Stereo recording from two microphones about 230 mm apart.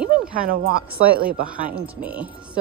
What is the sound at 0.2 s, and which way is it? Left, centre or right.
Speech, right.